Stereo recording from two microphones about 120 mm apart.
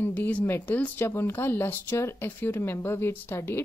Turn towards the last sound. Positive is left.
turn(degrees=20)  # may be behind; listen again after turning